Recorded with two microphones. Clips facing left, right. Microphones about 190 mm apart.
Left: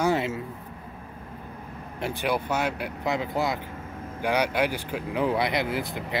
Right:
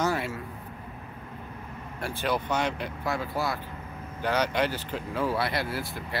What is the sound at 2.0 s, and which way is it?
Speech, 15° left (ahead or behind).